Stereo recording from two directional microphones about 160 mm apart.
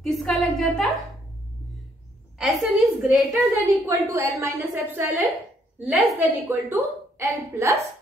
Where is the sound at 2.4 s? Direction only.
Centre (ahead or behind).